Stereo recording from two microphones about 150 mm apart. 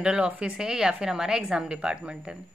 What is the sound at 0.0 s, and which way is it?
Speech, 5° right (ahead or behind).